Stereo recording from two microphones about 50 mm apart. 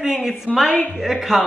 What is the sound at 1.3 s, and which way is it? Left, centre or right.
Speech, centre.